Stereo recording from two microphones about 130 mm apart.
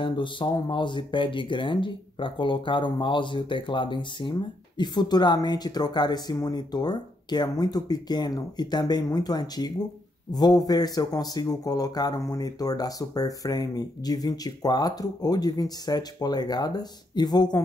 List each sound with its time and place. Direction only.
0.0 s a man's voice: 40° left (ahead or behind)